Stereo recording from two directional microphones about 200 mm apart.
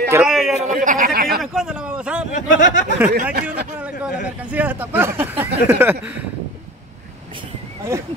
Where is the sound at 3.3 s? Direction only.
50° right (ahead or behind).